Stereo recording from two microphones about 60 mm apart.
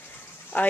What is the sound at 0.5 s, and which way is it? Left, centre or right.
Speech, left.